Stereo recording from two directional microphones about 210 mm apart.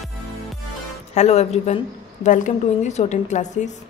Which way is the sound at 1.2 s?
30° left (ahead or behind).